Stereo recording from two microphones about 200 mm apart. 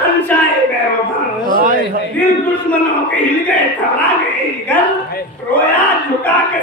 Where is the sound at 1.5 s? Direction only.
40° right (ahead or behind).